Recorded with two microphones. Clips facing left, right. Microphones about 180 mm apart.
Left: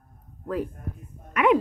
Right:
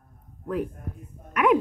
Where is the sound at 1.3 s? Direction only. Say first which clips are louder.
Even; centre (ahead or behind).